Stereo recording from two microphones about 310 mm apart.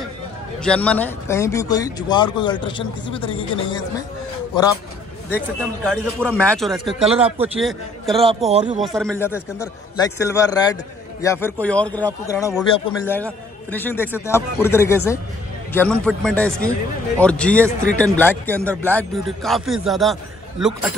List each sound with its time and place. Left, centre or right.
0.6 s a man's voice: centre
5.6 s a man's voice: centre
8.5 s speech: right
8.7 s a man's voice: centre